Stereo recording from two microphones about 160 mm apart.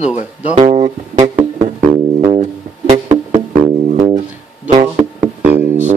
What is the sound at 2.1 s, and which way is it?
Music, 35° right (ahead or behind).